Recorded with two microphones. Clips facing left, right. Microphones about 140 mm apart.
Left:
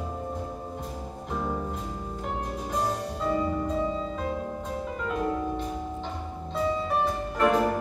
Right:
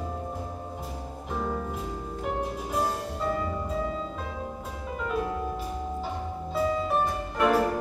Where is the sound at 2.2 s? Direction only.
5° right (ahead or behind).